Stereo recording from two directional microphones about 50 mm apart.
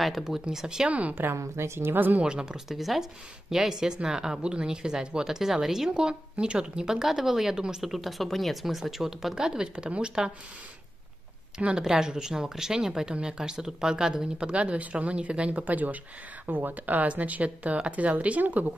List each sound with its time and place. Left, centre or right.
0.0 s speech: centre
0.8 s speech: right
1.3 s a woman's voice: right
1.8 s speech: right
2.2 s speech: centre
2.7 s a woman's voice: centre
11.8 s speech: centre; by 18.7 s right